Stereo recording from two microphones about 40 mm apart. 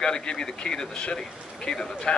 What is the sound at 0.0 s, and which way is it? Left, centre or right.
Speech, centre.